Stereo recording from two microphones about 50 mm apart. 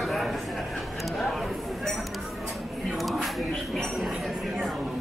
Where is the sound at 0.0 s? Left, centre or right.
Centre.